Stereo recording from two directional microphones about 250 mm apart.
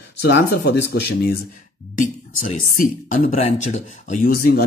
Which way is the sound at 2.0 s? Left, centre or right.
Left.